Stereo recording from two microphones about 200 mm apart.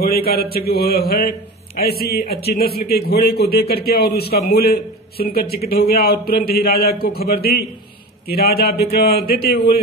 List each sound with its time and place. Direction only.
0.0 s a man's voice: 50° left (ahead or behind)